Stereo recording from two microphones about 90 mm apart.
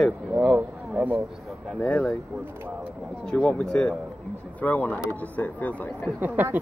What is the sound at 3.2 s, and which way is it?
Speech, 10° left (ahead or behind).